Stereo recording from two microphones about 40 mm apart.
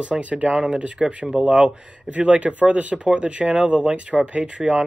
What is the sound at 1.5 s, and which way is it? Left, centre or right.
Speech, centre.